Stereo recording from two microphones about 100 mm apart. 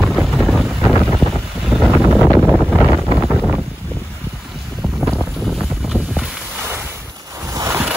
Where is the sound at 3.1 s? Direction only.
5° left (ahead or behind).